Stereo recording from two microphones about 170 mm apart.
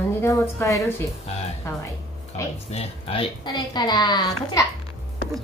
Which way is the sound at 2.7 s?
35° left (ahead or behind).